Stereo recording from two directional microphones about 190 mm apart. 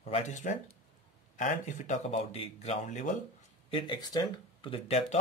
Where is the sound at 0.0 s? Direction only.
35° left (ahead or behind).